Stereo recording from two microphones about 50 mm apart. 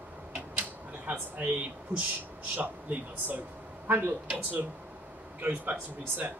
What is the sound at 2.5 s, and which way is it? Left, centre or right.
Speech, right.